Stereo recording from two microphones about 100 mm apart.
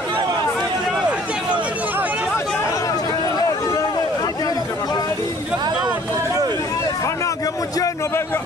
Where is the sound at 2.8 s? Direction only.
40° left (ahead or behind).